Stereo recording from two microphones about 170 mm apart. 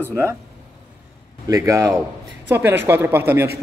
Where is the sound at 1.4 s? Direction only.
20° right (ahead or behind).